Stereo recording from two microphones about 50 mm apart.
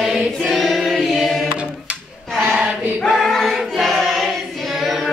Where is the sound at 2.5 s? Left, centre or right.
Right.